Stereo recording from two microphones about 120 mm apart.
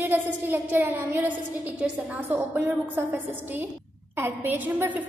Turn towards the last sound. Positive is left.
turn(degrees=-15)  # may be behind; listen again after turning